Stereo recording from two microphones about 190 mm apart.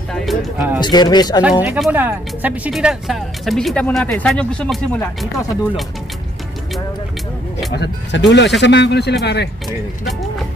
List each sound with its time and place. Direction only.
0.1 s music: centre (ahead or behind)
0.7 s speech: 20° left (ahead or behind)
1.6 s speech: 10° right (ahead or behind)
7.7 s speech: 65° left (ahead or behind)